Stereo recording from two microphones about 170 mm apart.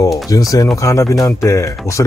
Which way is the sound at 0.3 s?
20° left (ahead or behind).